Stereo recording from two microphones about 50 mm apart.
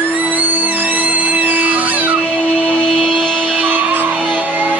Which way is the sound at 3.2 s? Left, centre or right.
Centre.